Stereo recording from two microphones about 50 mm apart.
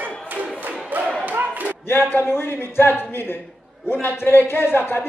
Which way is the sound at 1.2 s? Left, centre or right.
Right.